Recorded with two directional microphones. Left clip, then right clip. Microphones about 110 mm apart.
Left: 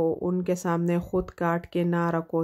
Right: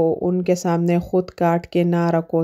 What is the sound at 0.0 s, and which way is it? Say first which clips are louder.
Speech: right 7 dB; 25° right (ahead or behind).